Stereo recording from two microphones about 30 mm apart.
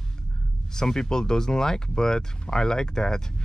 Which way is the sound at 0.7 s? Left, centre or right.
Centre.